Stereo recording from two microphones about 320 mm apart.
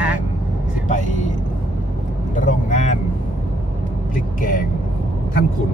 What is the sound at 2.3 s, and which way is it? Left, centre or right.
Speech, left.